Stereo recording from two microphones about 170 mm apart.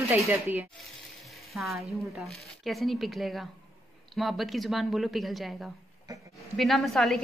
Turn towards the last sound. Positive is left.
turn(degrees=0)  # may be behind; listen again after turning